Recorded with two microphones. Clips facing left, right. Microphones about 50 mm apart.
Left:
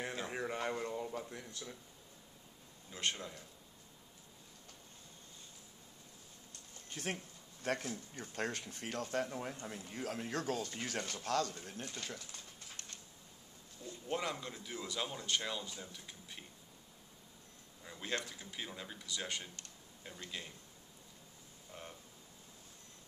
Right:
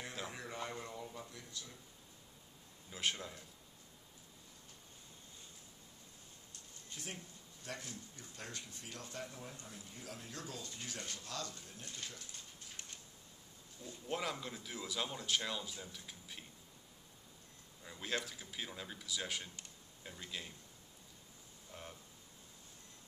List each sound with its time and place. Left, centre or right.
0.3 s a sound: left
1.3 s speech: left
2.9 s speech: centre
6.9 s speech: left
14.0 s speech: centre
17.8 s speech: centre
21.7 s speech: centre